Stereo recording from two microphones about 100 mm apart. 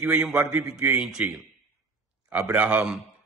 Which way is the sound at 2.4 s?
15° right (ahead or behind).